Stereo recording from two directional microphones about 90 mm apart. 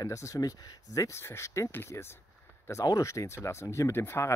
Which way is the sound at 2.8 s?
40° left (ahead or behind).